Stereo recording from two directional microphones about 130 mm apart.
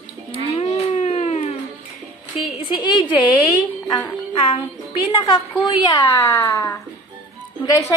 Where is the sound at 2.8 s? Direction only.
40° left (ahead or behind).